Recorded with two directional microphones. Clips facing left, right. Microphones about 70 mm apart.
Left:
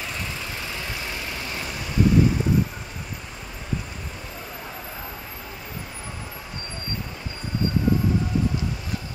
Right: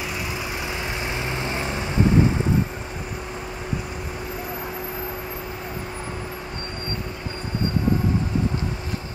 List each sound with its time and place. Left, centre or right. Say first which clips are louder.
1.0 s vehicle: right 5 dB; right